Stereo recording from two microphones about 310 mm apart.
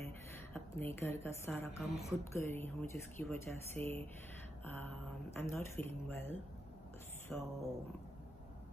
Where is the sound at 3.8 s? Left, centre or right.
Right.